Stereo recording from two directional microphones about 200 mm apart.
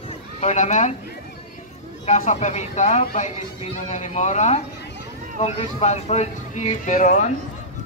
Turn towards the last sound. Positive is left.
turn(degrees=40)  # may be behind; listen again after turning